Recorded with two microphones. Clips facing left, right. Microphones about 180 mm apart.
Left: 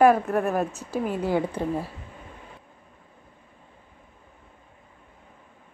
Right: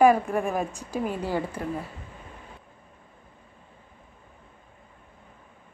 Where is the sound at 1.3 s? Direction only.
20° left (ahead or behind).